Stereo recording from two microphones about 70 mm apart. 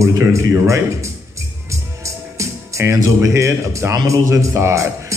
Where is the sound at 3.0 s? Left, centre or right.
Right.